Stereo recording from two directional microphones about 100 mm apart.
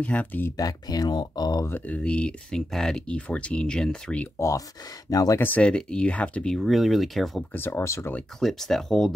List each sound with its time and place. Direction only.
0.0 s speech: 15° left (ahead or behind)
0.6 s speech: 40° left (ahead or behind)
1.7 s speech: 15° left (ahead or behind)
4.4 s speech: 30° left (ahead or behind)
5.4 s speech: 15° left (ahead or behind)
7.5 s speech: 25° left (ahead or behind)
8.4 s speech: 5° left (ahead or behind)